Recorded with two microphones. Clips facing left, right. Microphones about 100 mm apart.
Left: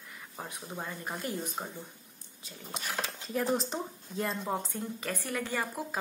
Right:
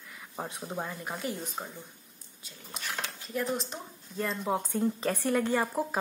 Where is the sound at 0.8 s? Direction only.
5° right (ahead or behind).